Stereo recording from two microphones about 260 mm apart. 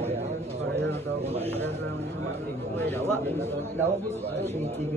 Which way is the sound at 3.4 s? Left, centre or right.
Centre.